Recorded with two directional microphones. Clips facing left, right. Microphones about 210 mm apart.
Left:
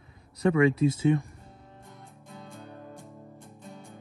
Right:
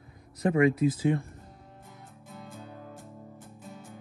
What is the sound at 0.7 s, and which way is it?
Speech, 30° left (ahead or behind).